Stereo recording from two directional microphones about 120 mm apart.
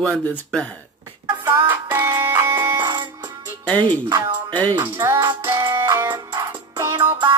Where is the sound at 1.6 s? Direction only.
15° right (ahead or behind).